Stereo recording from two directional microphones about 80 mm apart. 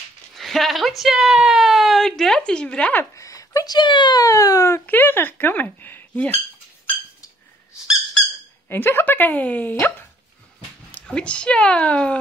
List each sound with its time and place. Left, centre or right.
0.3 s a woman's voice: centre
3.2 s a sound: left
3.7 s speech: left
4.2 s speech: left
4.7 s speech: left
8.6 s speech: left